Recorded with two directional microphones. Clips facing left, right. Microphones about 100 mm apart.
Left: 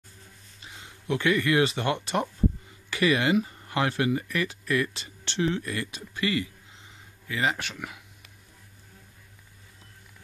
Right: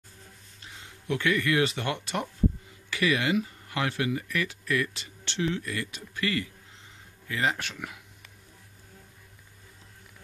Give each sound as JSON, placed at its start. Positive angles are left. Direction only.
{"t": 1.0, "sound": "speech", "side_deg": 25}
{"t": 6.1, "sound": "speech", "side_deg": 15}
{"t": 7.2, "sound": "speech", "side_deg": 5}